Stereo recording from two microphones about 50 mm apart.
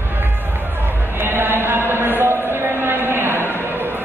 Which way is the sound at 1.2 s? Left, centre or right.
Right.